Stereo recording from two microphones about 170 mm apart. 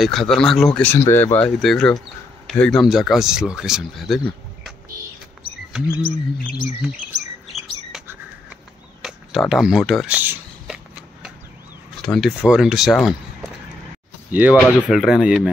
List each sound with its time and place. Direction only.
0.0 s speech: centre (ahead or behind)
5.7 s rodents: 5° right (ahead or behind)
6.0 s bird: 60° left (ahead or behind)
9.0 s a sound: centre (ahead or behind)
12.0 s speech: centre (ahead or behind)